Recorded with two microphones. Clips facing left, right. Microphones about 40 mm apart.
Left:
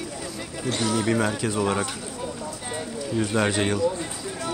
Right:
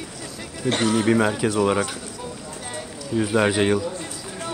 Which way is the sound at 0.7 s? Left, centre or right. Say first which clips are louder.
Right 4 dB; right.